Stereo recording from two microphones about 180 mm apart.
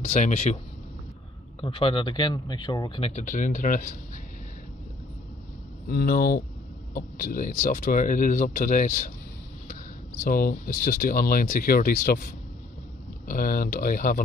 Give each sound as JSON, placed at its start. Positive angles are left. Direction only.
{"t": 0.0, "sound": "speech", "side_deg": 40}
{"t": 1.6, "sound": "speech", "side_deg": 30}
{"t": 5.9, "sound": "speech", "side_deg": 55}
{"t": 10.2, "sound": "speech", "side_deg": 50}
{"t": 13.3, "sound": "speech", "side_deg": 50}